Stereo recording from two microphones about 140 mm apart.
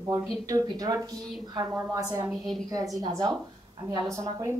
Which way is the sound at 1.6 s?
15° right (ahead or behind).